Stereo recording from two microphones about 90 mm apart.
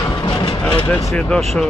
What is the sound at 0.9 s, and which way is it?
Speech, 15° left (ahead or behind).